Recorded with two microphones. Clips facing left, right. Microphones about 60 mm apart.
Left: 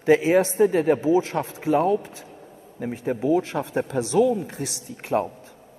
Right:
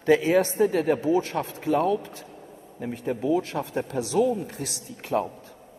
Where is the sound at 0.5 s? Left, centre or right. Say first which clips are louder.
Left 3 dB; left.